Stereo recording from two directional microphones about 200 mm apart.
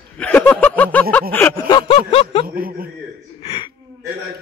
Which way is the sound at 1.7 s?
25° left (ahead or behind).